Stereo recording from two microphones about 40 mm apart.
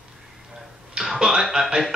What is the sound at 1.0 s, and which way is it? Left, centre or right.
Speech, centre.